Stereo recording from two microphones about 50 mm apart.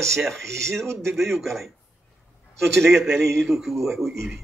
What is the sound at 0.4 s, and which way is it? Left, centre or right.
Speech, right.